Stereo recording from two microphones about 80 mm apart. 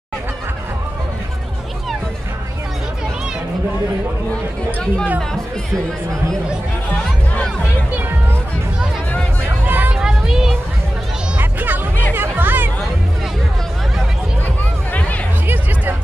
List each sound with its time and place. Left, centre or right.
9.7 s hubbub: right
9.9 s a sound: centre
11.3 s music: right
15.4 s music: right